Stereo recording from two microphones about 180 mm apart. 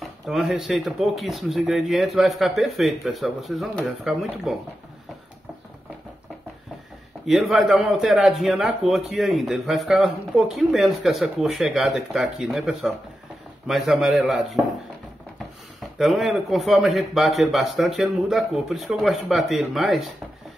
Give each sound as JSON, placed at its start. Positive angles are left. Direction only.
{"t": 0.0, "sound": "a man's voice", "side_deg": 0}
{"t": 7.2, "sound": "a man's voice", "side_deg": 0}
{"t": 16.0, "sound": "a man's voice", "side_deg": 0}